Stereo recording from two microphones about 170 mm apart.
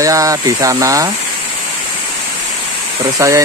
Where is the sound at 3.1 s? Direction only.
20° right (ahead or behind).